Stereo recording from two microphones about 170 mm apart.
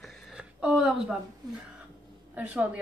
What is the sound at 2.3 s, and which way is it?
Speech, 10° right (ahead or behind).